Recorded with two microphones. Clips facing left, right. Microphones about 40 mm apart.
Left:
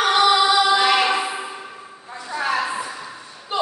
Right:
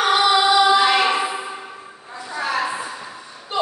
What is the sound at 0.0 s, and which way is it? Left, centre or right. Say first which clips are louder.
Music: even; centre.